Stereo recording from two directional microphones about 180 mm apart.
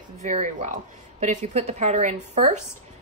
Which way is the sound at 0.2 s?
40° right (ahead or behind).